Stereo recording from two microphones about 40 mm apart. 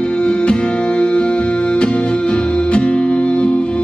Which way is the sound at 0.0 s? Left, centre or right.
Left.